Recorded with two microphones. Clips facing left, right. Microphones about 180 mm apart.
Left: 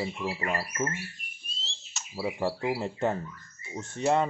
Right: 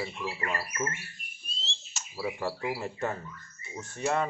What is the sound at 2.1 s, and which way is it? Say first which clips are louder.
Speech: left 3 dB; 25° left (ahead or behind).